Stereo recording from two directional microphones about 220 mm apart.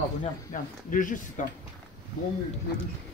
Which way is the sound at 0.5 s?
40° left (ahead or behind).